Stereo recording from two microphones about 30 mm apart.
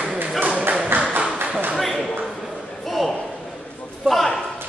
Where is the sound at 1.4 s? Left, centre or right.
Right.